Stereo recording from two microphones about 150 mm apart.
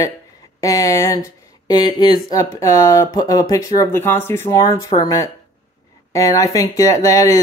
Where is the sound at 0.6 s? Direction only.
25° left (ahead or behind).